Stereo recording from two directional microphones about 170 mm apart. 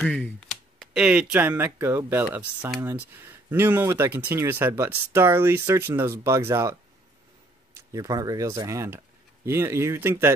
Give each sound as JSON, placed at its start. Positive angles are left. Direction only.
{"t": 0.0, "sound": "speech", "side_deg": 5}